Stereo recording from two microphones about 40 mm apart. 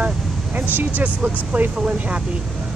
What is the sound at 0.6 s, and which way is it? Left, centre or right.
Speech, right.